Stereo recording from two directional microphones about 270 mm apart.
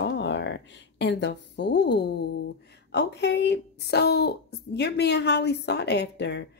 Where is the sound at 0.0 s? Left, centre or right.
Left.